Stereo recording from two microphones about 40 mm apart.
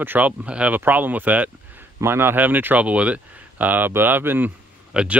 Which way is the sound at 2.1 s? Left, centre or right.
Right.